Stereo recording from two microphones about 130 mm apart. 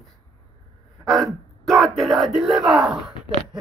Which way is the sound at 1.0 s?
Centre (ahead or behind).